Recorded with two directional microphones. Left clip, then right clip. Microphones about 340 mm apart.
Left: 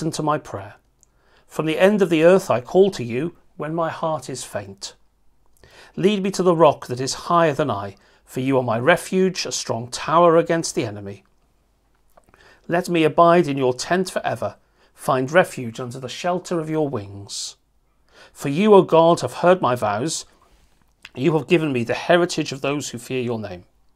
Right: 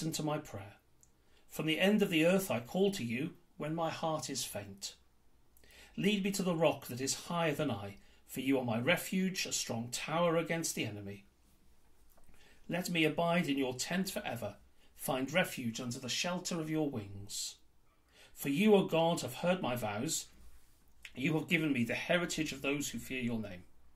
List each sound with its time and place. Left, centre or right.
0.1 s speech: left
5.9 s speech: left
12.6 s speech: left
18.1 s speech: left